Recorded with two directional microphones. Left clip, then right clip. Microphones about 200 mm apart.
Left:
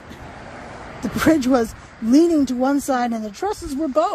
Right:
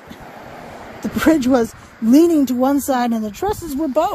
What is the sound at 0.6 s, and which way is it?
Vehicle, 50° right (ahead or behind).